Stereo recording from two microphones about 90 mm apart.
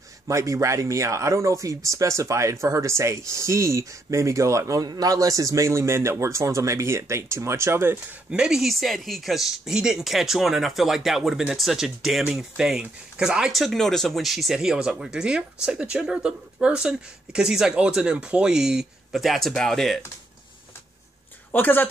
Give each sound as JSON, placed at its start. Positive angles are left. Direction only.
{"t": 0.3, "sound": "speech", "side_deg": -35}
{"t": 8.3, "sound": "speech", "side_deg": -5}
{"t": 21.5, "sound": "speech", "side_deg": 20}